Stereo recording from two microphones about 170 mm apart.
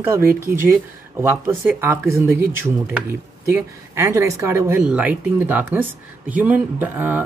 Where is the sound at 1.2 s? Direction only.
15° right (ahead or behind).